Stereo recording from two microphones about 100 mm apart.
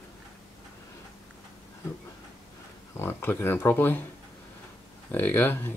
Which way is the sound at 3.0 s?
20° left (ahead or behind).